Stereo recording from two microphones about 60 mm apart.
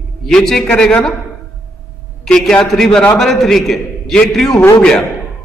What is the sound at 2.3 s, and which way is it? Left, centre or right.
A man's voice, centre.